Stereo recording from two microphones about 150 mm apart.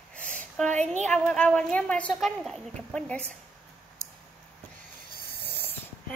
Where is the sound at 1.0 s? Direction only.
5° left (ahead or behind).